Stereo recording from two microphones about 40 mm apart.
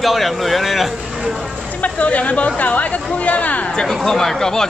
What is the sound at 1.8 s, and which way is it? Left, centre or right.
Speech, left.